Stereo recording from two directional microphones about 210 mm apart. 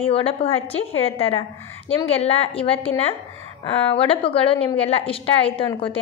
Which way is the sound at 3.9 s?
25° left (ahead or behind).